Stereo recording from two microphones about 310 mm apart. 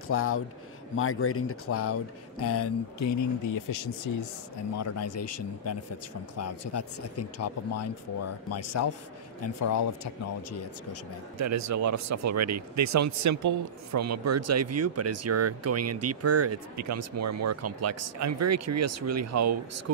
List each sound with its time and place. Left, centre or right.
0.1 s speech: left
4.7 s speech: left
11.3 s speech: right